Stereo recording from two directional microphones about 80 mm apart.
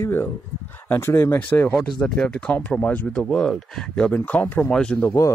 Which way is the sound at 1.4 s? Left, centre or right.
Centre.